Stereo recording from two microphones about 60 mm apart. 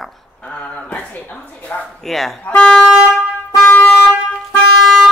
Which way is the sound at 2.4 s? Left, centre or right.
Centre.